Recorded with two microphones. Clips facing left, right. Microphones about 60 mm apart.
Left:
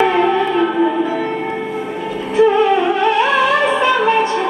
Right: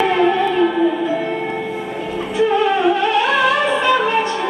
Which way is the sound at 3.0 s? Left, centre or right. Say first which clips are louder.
Left 2 dB; left.